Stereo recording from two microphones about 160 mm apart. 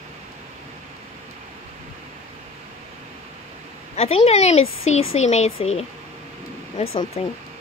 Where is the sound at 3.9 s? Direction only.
40° left (ahead or behind).